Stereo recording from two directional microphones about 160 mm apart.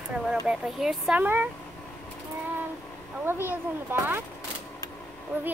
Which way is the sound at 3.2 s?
15° right (ahead or behind).